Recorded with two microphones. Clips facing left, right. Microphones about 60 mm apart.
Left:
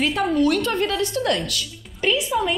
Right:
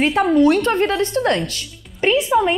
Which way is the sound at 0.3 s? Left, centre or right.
Right.